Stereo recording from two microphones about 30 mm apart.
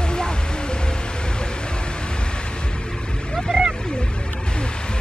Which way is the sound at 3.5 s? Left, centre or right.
Right.